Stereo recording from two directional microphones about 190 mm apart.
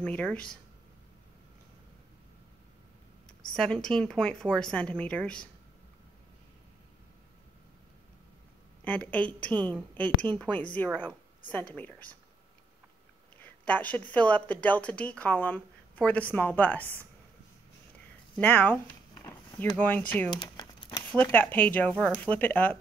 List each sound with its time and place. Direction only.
0.0 s speech: 5° left (ahead or behind)
3.5 s a woman's voice: 5° left (ahead or behind)
8.8 s a woman's voice: 10° left (ahead or behind)
13.4 s speech: 10° left (ahead or behind)
18.3 s speech: 10° left (ahead or behind)
20.3 s crumpling: 25° left (ahead or behind)
21.1 s speech: 10° left (ahead or behind)